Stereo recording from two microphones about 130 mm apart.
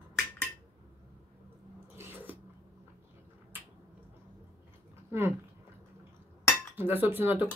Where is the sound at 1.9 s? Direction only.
15° right (ahead or behind).